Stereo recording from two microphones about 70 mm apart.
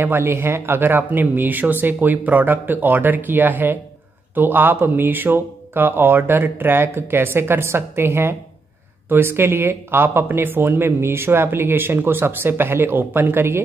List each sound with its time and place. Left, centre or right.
0.0 s speech: right